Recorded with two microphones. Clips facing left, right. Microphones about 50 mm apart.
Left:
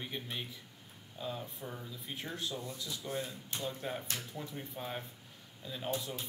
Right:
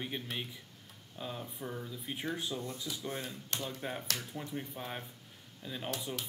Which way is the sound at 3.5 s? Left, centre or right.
Right.